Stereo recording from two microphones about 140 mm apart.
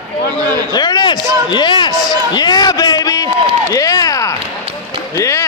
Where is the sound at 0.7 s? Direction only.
30° left (ahead or behind).